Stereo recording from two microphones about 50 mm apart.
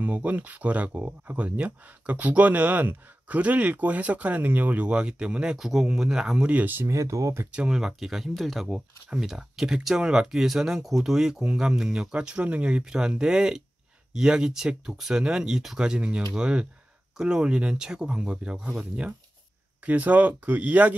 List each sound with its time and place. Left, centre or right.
0.0 s speech: right
4.8 s speech: right
5.6 s speech: centre
6.4 s speech: right
6.9 s speech: right
7.5 s speech: right
7.8 s speech: centre
8.6 s speech: centre
12.8 s speech: centre; by 20.9 s right